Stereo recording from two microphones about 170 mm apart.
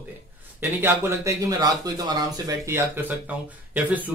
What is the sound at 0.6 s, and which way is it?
Speech, 10° right (ahead or behind).